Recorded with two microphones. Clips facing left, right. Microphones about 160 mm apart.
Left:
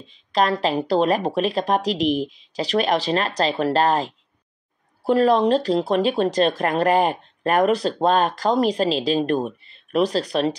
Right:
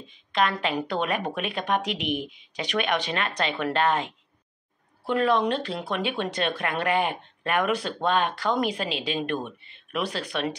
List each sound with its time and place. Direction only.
0.1 s speech: 35° left (ahead or behind)